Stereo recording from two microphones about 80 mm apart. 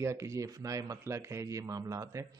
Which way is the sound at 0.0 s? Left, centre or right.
Right.